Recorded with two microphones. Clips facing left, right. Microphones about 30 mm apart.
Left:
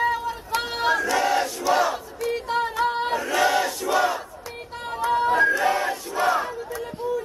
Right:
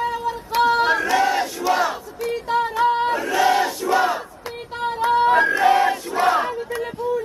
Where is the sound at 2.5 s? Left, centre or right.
Centre.